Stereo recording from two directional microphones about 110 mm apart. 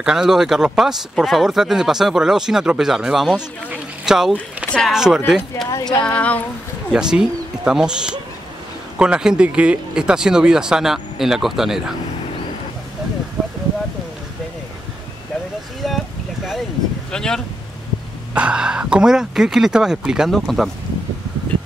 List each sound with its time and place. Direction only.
0.0 s speech: 5° right (ahead or behind)
4.6 s speech: 10° left (ahead or behind)
4.9 s speech: 5° right (ahead or behind)
5.7 s speech: 35° left (ahead or behind)
6.0 s speech: 10° left (ahead or behind)
6.9 s speech: 5° right (ahead or behind)
17.1 s speech: 5° left (ahead or behind)
18.3 s speech: 10° right (ahead or behind)